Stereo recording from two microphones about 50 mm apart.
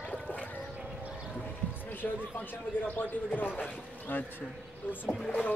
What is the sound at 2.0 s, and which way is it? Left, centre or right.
Speech, left.